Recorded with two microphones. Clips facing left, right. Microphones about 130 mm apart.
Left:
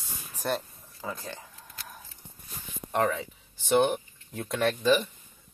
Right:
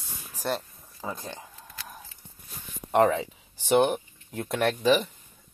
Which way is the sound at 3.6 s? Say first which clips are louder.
Right 2 dB; 5° right (ahead or behind).